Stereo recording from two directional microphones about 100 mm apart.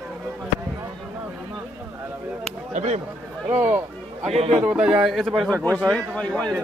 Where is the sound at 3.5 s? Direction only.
20° right (ahead or behind).